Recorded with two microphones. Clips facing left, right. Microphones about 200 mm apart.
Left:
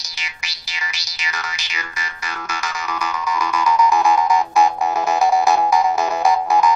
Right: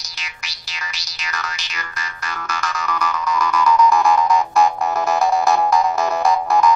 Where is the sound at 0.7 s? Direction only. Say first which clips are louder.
Left 1 dB; 5° left (ahead or behind).